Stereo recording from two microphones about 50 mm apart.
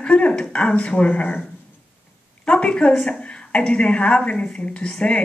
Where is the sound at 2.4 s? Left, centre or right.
Left.